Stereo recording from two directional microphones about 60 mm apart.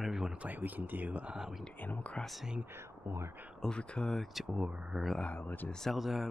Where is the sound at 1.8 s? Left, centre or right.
Left.